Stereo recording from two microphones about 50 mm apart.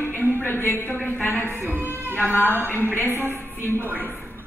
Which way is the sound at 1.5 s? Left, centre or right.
Right.